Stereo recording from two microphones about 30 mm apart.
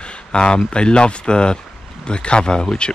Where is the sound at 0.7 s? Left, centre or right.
Left.